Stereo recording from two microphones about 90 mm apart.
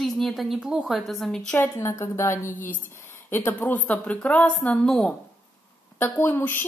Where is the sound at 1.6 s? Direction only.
35° left (ahead or behind); by 5.1 s 10° left (ahead or behind).